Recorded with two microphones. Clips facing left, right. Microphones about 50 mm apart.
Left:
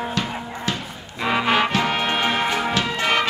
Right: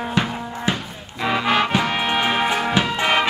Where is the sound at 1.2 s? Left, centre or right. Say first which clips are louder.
Even; centre.